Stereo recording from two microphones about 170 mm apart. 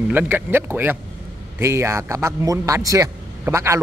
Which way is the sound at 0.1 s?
10° right (ahead or behind).